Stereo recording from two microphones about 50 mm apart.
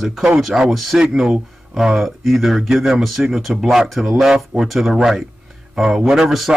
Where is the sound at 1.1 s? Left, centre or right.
Centre.